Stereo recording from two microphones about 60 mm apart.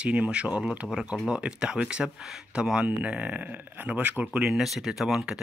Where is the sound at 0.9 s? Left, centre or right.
Centre.